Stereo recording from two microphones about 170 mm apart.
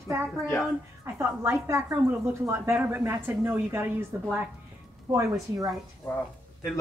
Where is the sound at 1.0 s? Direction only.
15° right (ahead or behind).